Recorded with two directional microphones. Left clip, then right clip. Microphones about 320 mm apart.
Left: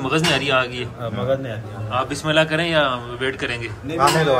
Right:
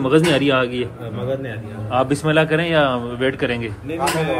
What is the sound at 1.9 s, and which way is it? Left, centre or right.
Speech, centre.